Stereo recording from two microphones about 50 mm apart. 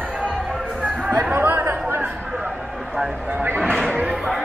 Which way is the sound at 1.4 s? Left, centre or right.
Right.